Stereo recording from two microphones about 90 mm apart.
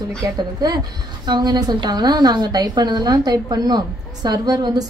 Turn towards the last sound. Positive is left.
turn(degrees=-45)  # may be behind; listen again after turning